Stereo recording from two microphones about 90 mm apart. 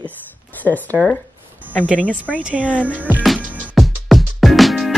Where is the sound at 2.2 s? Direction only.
15° right (ahead or behind).